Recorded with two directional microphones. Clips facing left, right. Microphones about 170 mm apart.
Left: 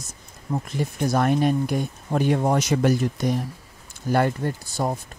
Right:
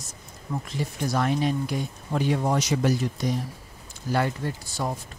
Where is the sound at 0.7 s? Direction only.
50° left (ahead or behind).